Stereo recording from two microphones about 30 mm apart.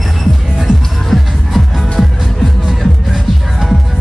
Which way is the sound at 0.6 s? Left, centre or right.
Centre.